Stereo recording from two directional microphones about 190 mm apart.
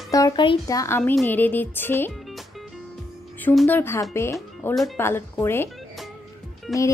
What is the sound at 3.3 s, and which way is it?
Speech, 10° left (ahead or behind).